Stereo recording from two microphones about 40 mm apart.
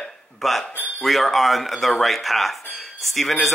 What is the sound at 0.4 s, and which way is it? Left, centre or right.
Speech, centre.